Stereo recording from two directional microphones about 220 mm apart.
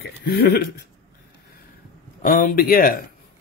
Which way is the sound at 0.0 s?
45° left (ahead or behind).